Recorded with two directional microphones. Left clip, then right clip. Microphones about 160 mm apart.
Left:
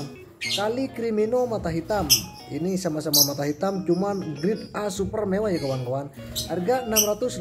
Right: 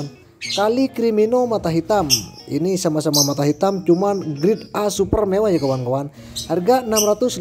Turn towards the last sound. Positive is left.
turn(degrees=-40)  # may be behind; listen again after turning